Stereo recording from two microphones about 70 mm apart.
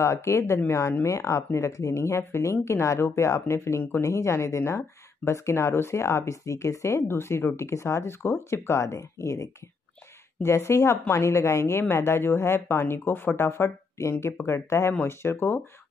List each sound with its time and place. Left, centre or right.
0.0 s speech: left